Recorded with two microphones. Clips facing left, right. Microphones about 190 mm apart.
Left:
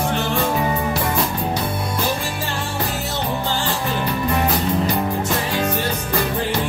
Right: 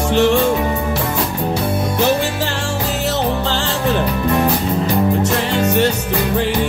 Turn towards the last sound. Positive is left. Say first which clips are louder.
# right 6 dB
turn(degrees=-75)  # may be behind; listen again after turning